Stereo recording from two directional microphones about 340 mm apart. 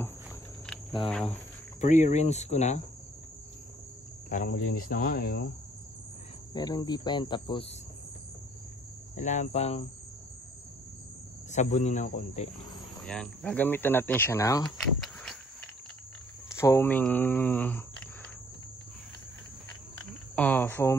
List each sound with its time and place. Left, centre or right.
1.0 s speech: centre
1.8 s cricket: left
4.3 s cricket: left
6.5 s speech: centre
9.1 s cricket: left
11.5 s cricket: left
13.0 s speech: centre
16.5 s speech: centre
20.0 s cricket: centre